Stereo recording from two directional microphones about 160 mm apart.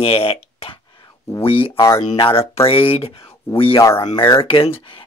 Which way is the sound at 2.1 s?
35° left (ahead or behind).